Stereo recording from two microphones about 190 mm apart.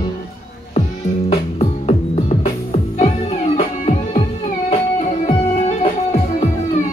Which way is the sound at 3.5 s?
35° left (ahead or behind).